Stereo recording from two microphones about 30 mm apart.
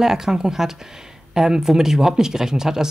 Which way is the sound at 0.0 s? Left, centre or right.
Centre.